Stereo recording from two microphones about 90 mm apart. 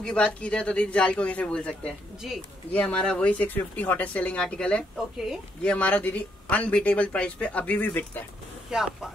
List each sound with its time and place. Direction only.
0.0 s speech: 10° left (ahead or behind)
8.7 s speech: 5° right (ahead or behind)